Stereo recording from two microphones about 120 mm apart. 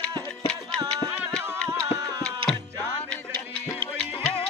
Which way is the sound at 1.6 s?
30° right (ahead or behind).